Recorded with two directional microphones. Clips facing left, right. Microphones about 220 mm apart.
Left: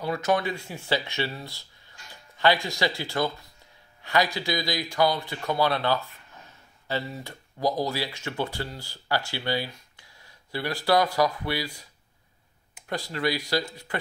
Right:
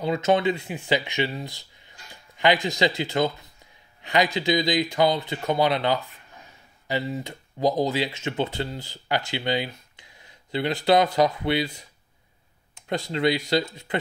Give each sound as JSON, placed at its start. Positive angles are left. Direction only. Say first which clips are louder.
{"t": 0.0, "sound": "speech", "louder": "right 4 dB", "side_deg": -20}
{"t": 12.8, "sound": "speech", "louder": "right 5 dB", "side_deg": -20}